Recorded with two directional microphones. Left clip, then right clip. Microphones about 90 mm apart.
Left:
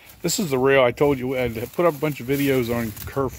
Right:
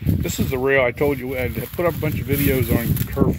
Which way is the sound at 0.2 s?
60° left (ahead or behind).